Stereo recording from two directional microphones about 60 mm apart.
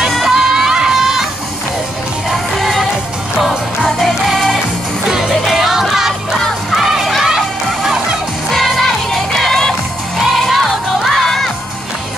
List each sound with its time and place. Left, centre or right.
0.0 s music: centre
2.2 s music: centre
8.5 s music: centre